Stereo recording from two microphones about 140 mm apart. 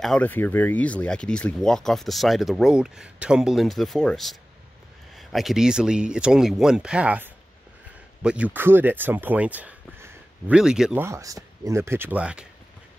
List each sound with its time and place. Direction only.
0.0 s speech: 5° left (ahead or behind)
11.0 s speech: 20° right (ahead or behind)